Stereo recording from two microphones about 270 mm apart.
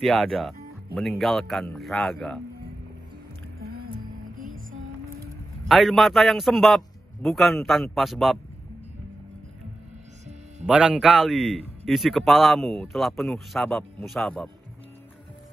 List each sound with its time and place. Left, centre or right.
0.0 s a man's voice: centre
3.6 s music: right
5.7 s a man's voice: centre
10.7 s a man's voice: centre